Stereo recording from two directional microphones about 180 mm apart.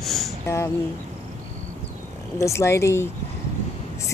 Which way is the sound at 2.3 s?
15° left (ahead or behind).